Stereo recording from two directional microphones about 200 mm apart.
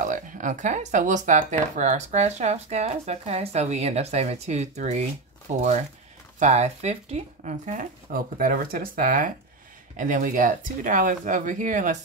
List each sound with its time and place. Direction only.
0.0 s speech: 40° right (ahead or behind)